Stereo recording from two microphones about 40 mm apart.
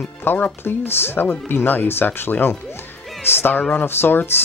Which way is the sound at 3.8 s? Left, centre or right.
Left.